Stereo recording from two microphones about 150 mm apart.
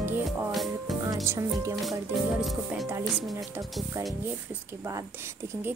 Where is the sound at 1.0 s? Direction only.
20° right (ahead or behind).